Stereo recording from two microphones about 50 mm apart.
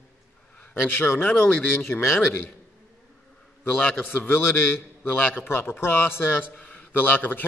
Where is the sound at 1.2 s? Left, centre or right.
Left.